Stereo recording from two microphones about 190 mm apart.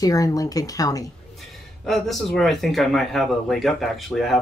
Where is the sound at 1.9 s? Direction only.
Centre (ahead or behind).